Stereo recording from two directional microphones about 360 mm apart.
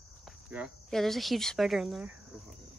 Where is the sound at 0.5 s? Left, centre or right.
Centre.